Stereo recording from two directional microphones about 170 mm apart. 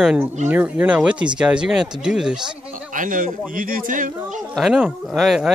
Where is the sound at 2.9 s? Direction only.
50° right (ahead or behind).